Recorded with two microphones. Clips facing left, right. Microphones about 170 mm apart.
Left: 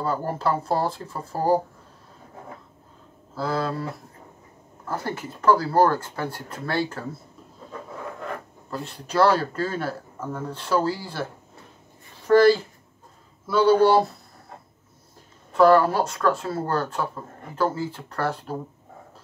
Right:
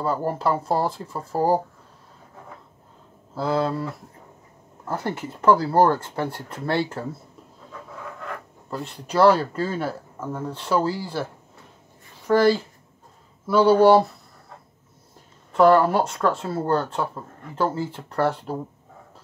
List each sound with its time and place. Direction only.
0.0 s speech: 15° right (ahead or behind)
3.3 s speech: 20° right (ahead or behind)
4.8 s speech: 20° right (ahead or behind)
8.6 s speech: 15° right (ahead or behind)
12.3 s speech: 15° right (ahead or behind)
15.5 s speech: 20° right (ahead or behind)